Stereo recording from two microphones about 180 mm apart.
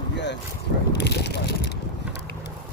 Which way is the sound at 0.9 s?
70° left (ahead or behind).